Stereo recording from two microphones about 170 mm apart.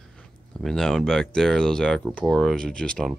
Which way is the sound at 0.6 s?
Centre (ahead or behind).